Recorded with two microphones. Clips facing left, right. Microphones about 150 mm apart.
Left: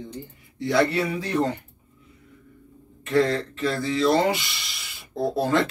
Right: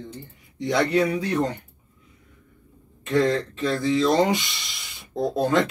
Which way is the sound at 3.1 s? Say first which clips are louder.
Even; 20° right (ahead or behind).